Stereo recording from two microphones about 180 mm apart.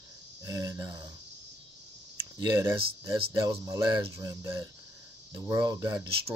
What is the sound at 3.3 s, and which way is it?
Speech, 20° right (ahead or behind).